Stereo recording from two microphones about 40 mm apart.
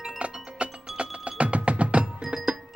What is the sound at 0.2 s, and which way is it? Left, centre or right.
Music, right.